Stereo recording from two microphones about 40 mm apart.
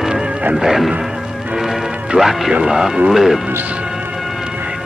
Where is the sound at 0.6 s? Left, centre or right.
Centre.